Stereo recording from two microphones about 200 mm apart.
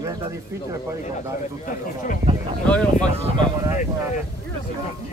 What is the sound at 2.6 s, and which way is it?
Speech, 5° left (ahead or behind).